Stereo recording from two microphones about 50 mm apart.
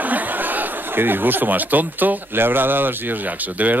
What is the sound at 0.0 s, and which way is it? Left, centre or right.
Speech, right.